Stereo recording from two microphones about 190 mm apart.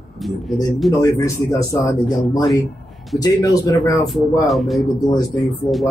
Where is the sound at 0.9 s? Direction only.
15° left (ahead or behind).